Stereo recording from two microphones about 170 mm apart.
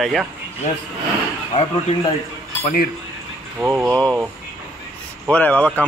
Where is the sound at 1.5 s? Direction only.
35° left (ahead or behind).